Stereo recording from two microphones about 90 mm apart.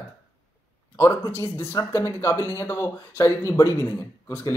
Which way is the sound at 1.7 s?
35° left (ahead or behind).